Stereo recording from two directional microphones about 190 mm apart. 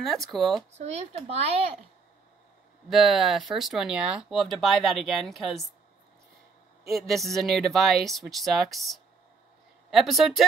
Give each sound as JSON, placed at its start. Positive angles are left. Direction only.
{"t": 0.0, "sound": "speech", "side_deg": 0}
{"t": 0.7, "sound": "speech", "side_deg": -35}
{"t": 2.9, "sound": "speech", "side_deg": 0}
{"t": 6.9, "sound": "speech", "side_deg": 0}